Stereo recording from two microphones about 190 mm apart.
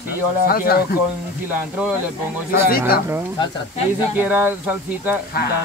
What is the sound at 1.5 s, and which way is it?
Speech, 10° right (ahead or behind).